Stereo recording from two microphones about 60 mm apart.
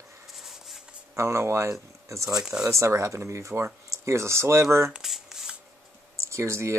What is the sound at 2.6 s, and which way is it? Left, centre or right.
Speech, right.